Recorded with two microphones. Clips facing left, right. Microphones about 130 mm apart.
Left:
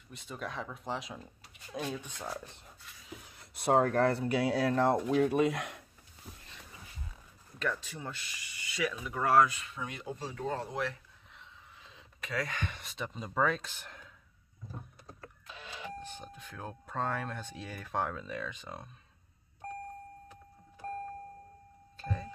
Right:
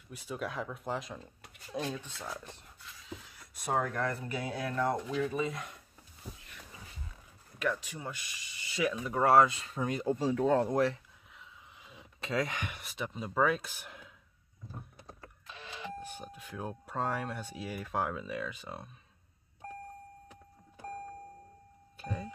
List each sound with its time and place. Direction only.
0.1 s speech: 5° right (ahead or behind)
2.0 s speech: 15° left (ahead or behind)
3.5 s speech: 70° left (ahead or behind)
3.8 s speech: 35° left (ahead or behind)
4.1 s speech: 85° left
7.5 s speech: 15° right (ahead or behind)
8.7 s speech: 25° right (ahead or behind); by 10.8 s 55° right (ahead or behind)
11.3 s a sound: 15° right (ahead or behind)
12.2 s speech: 25° right (ahead or behind); by 14.1 s 10° right (ahead or behind)
16.0 s speech: 10° right (ahead or behind)
21.9 s a sound: 10° right (ahead or behind)